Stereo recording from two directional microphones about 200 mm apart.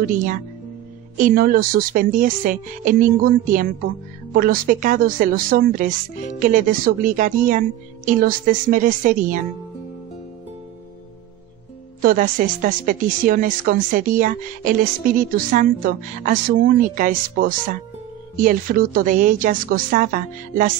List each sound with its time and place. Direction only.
1.1 s speech: 45° right (ahead or behind)
12.0 s speech: 45° right (ahead or behind)